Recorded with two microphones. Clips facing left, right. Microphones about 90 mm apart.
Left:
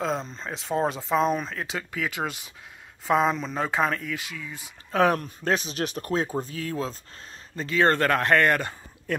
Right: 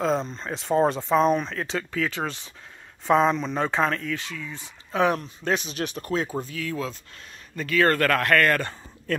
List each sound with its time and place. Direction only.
0.0 s speech: centre (ahead or behind)
4.9 s speech: 40° left (ahead or behind)
7.5 s speech: 25° left (ahead or behind)